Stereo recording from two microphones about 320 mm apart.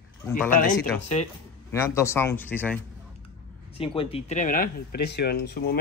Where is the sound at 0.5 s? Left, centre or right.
Left.